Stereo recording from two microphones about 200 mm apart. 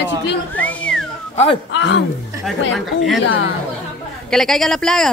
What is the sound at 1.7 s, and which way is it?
Speech, 65° left (ahead or behind).